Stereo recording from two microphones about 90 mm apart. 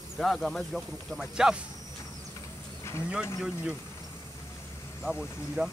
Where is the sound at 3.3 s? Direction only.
5° right (ahead or behind).